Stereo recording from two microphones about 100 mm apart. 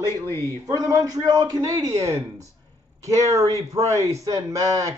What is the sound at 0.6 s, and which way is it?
Speech, 35° right (ahead or behind).